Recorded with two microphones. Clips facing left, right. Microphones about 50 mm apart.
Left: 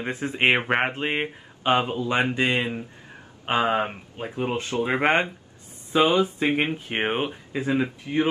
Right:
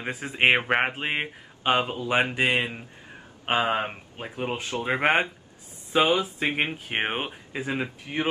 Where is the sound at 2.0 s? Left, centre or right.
Centre.